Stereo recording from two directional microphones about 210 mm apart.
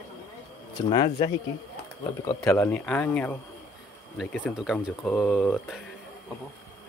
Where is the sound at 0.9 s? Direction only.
25° left (ahead or behind).